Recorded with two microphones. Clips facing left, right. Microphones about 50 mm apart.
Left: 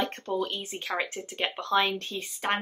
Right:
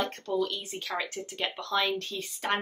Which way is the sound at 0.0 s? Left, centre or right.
Left.